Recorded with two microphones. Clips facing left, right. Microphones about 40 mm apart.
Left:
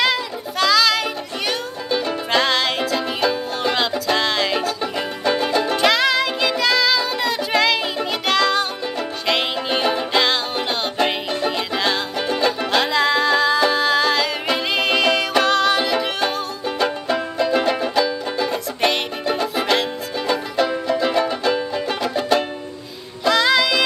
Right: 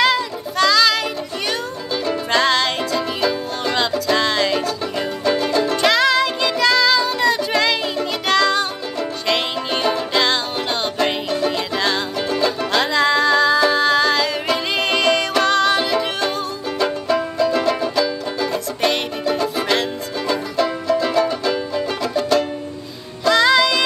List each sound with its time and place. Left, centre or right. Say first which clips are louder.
0.0 s music: right 3 dB; centre
2.3 s music: right 1 dB; centre
10.2 s music: even; centre
12.8 s music: right 3 dB; centre
23.2 s music: right 2 dB; centre